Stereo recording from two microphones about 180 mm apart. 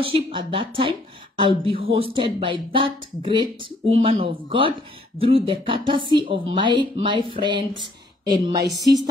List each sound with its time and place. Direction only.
0.0 s speech: 30° right (ahead or behind)